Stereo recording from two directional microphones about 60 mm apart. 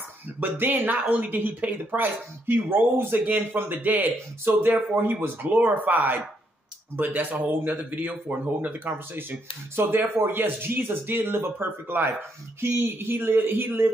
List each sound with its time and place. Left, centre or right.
0.4 s a man's voice: right